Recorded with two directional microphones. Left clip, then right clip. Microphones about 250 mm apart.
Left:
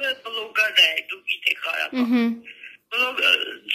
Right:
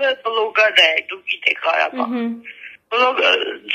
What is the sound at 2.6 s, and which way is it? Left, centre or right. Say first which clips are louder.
Speech: right 7 dB; right.